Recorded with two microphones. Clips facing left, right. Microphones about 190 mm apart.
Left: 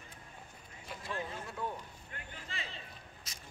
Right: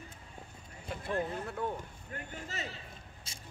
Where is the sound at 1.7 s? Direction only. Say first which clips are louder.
Right 5 dB; 45° right (ahead or behind).